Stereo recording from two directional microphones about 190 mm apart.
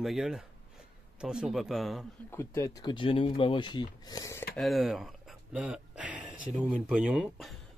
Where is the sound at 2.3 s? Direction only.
15° left (ahead or behind).